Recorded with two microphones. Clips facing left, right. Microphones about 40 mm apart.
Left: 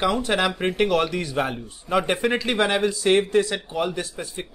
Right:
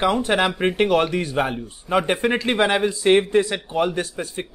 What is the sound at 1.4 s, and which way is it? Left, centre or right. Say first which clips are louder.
Speech: right 2 dB; centre.